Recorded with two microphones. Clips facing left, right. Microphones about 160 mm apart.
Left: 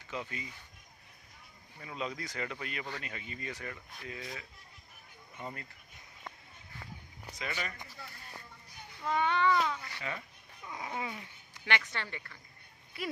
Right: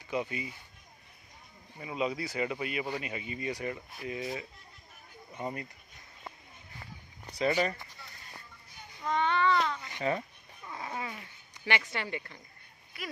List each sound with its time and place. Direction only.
0.1 s speech: 15° right (ahead or behind)
1.8 s speech: 10° right (ahead or behind)
7.3 s speech: 35° right (ahead or behind)
9.0 s speech: 10° left (ahead or behind)
10.1 s speech: 35° right (ahead or behind)
10.6 s a sound: 10° left (ahead or behind)
11.1 s a sound: 5° right (ahead or behind)
11.9 s speech: 10° right (ahead or behind)